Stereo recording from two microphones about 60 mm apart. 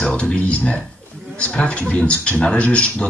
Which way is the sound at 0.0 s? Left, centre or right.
Centre.